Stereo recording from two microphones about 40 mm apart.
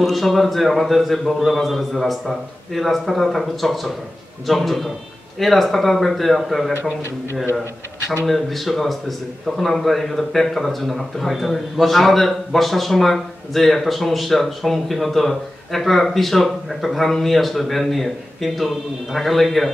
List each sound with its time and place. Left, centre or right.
0.0 s speech: centre
8.3 s speech: centre